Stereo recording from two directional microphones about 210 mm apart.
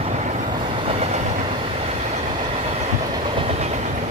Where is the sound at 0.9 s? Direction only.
30° right (ahead or behind).